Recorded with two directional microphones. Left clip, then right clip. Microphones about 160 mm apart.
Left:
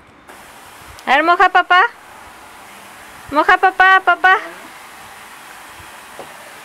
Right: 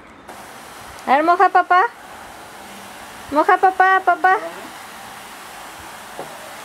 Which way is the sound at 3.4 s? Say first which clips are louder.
Left 3 dB; 25° left (ahead or behind).